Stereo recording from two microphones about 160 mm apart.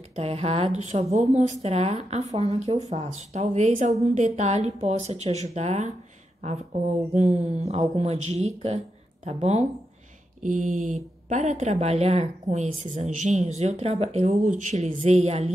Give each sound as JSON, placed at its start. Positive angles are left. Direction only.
{"t": 0.1, "sound": "a woman's voice", "side_deg": -40}
{"t": 7.2, "sound": "speech", "side_deg": -45}
{"t": 10.4, "sound": "speech", "side_deg": -55}